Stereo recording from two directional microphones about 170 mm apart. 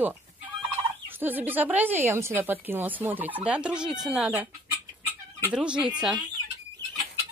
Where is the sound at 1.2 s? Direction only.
10° right (ahead or behind).